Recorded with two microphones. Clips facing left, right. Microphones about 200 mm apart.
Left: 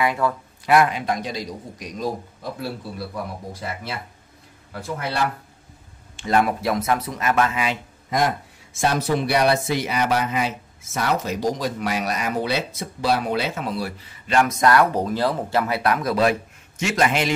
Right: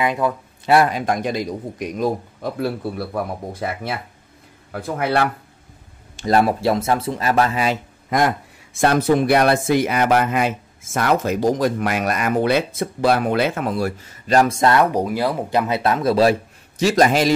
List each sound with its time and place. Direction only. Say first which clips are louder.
0.0 s speech: right 2 dB; 20° right (ahead or behind)
0.7 s a man's voice: right 2 dB; 35° right (ahead or behind); by 5.3 s 60° right (ahead or behind)
6.1 s speech: right 3 dB; 35° right (ahead or behind)
8.8 s speech: right 6 dB; 55° right (ahead or behind); by 14.9 s 25° right (ahead or behind)
14.9 s speech: right 2 dB; 10° right (ahead or behind); by 17.3 s 35° right (ahead or behind)